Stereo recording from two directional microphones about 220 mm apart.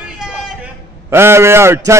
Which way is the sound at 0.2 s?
5° right (ahead or behind).